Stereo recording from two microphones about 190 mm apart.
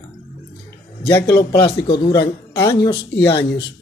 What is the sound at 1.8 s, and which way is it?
Speech, 60° left (ahead or behind).